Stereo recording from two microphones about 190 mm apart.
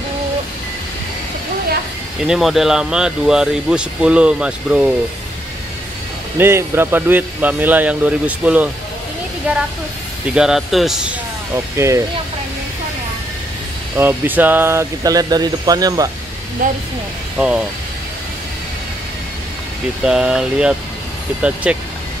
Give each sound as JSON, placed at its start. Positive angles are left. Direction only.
{"t": 2.2, "sound": "speech", "side_deg": 0}
{"t": 6.3, "sound": "speech", "side_deg": -10}
{"t": 10.3, "sound": "speech", "side_deg": -5}
{"t": 11.5, "sound": "speech", "side_deg": -15}
{"t": 13.9, "sound": "speech", "side_deg": -10}
{"t": 17.4, "sound": "speech", "side_deg": -5}
{"t": 20.0, "sound": "speech", "side_deg": -5}